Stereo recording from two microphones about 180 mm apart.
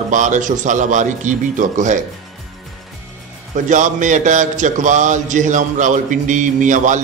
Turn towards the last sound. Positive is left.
turn(degrees=-45)  # may be behind; listen again after turning